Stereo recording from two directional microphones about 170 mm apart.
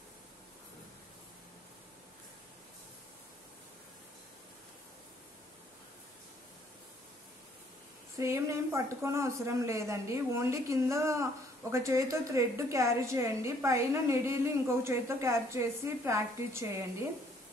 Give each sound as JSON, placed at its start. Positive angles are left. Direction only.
{"t": 8.2, "sound": "a woman's voice", "side_deg": -15}